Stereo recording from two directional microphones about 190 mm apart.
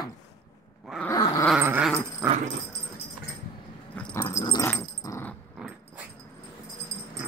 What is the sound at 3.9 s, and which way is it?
Dog, 10° left (ahead or behind).